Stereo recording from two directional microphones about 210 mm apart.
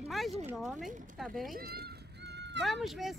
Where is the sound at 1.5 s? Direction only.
45° right (ahead or behind).